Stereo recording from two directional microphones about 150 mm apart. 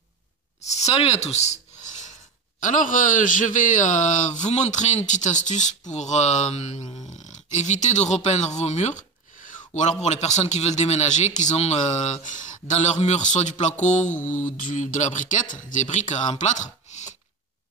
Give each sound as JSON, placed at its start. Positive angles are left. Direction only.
{"t": 0.7, "sound": "a sound", "side_deg": 45}
{"t": 2.6, "sound": "speech", "side_deg": 60}
{"t": 6.8, "sound": "a sound", "side_deg": 30}
{"t": 7.2, "sound": "speech", "side_deg": 55}
{"t": 14.1, "sound": "mantra", "side_deg": 10}
{"t": 14.6, "sound": "speech", "side_deg": 60}